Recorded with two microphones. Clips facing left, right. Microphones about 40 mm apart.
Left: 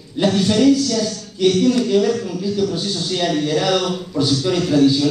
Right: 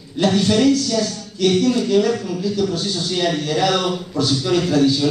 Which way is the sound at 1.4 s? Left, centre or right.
Centre.